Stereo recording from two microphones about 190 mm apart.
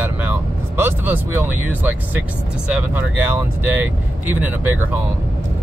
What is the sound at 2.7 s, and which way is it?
Speech, 10° right (ahead or behind).